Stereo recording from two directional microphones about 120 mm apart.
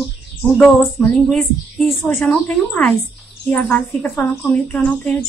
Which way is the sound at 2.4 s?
15° left (ahead or behind).